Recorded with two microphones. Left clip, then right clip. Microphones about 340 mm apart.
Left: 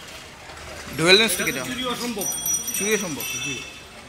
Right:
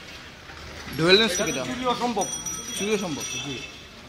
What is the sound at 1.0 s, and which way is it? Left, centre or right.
Speech, centre.